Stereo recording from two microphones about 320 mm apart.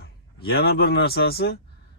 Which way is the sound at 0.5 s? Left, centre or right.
Left.